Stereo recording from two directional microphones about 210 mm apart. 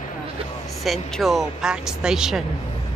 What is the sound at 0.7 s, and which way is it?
Speech, centre (ahead or behind).